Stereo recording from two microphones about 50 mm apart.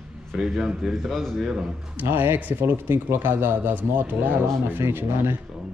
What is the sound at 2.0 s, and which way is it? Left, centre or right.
A man's voice, right.